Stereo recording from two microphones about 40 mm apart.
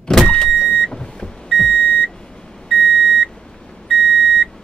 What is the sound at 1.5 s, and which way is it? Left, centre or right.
Beep, centre.